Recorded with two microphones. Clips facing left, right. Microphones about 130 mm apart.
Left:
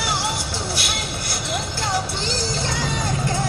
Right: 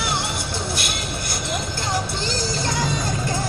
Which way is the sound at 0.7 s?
50° right (ahead or behind).